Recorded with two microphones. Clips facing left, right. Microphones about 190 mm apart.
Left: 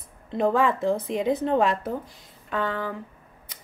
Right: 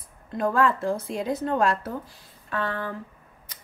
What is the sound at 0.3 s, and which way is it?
Speech, 20° left (ahead or behind).